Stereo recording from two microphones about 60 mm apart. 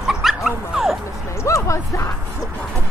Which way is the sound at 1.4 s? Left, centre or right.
Left.